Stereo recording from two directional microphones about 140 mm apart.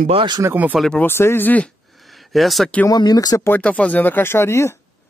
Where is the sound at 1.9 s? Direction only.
Centre (ahead or behind).